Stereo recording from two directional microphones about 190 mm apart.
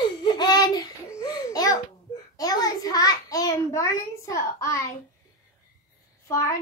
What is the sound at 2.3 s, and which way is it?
Child singing, 20° left (ahead or behind).